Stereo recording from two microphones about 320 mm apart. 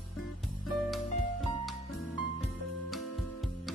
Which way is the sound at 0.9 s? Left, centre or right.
Centre.